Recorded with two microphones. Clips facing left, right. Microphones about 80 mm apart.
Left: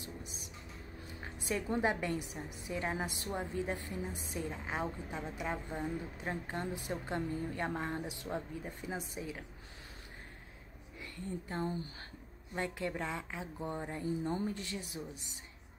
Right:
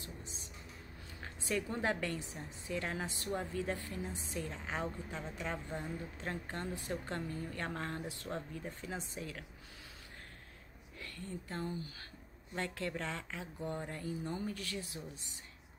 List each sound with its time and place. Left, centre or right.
1.5 s a woman's voice: centre
11.0 s a woman's voice: centre
11.6 s speech: left
12.5 s a woman's voice: centre